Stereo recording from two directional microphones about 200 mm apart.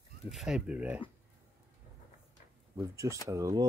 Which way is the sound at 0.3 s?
Centre (ahead or behind).